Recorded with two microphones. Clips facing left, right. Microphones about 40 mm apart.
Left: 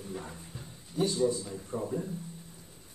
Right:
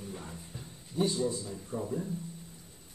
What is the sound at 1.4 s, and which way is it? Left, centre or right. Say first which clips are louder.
Speech: left 1 dB; left.